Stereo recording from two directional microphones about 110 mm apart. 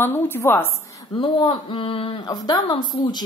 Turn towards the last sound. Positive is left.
turn(degrees=40)  # may be behind; listen again after turning